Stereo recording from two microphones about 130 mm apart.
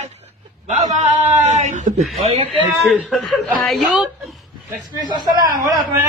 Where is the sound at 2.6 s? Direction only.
15° right (ahead or behind).